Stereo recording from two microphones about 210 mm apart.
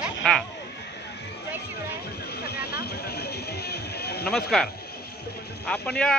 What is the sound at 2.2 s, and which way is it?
Vehicle, 50° left (ahead or behind).